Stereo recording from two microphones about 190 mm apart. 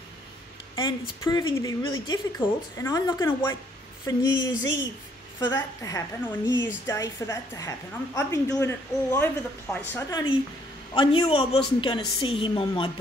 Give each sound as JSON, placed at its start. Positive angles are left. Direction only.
{"t": 0.7, "sound": "a woman's voice", "side_deg": 20}
{"t": 11.0, "sound": "speech", "side_deg": 30}